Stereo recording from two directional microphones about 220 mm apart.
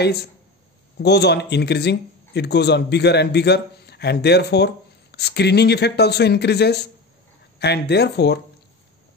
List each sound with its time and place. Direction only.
0.0 s speech: 50° left (ahead or behind)